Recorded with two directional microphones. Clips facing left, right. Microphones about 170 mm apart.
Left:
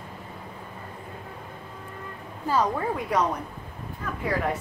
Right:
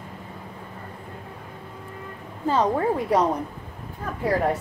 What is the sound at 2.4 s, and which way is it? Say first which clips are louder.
Speech: right 4 dB; 25° right (ahead or behind).